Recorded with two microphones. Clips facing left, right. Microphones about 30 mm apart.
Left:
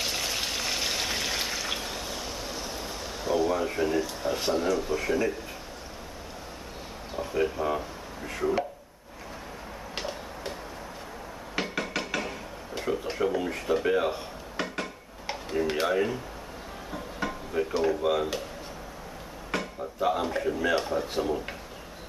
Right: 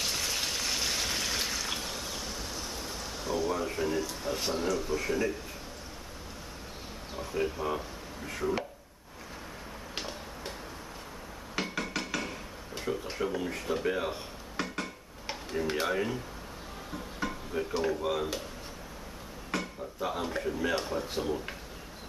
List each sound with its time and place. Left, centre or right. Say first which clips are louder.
0.0 s a sound: left 2 dB; centre
7.2 s speech: left 5 dB; centre
9.9 s a sound: left 4 dB; centre
11.5 s dishes: left 3 dB; centre
16.9 s speech: left 3 dB; centre
19.5 s speech: left 3 dB; centre